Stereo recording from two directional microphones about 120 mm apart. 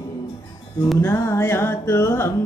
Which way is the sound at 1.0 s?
20° left (ahead or behind).